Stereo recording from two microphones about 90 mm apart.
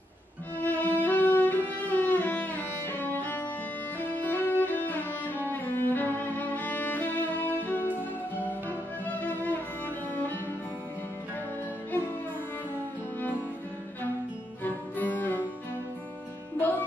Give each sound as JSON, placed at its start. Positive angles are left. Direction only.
{"t": 0.6, "sound": "violin", "side_deg": 20}
{"t": 1.0, "sound": "music", "side_deg": 20}
{"t": 14.6, "sound": "music", "side_deg": 20}